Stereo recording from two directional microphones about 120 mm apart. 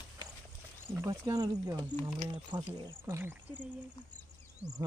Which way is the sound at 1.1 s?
30° right (ahead or behind).